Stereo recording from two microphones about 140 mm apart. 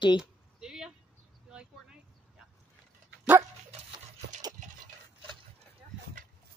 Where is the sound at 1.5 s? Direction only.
5° right (ahead or behind).